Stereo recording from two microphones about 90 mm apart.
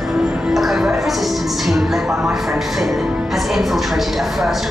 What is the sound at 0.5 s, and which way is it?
Music, centre (ahead or behind).